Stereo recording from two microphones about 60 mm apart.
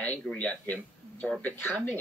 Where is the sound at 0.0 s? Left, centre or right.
Left.